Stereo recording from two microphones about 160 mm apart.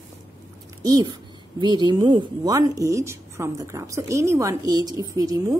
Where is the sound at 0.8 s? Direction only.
25° right (ahead or behind).